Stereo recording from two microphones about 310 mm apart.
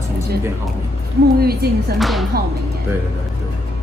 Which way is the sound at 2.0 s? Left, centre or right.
Centre.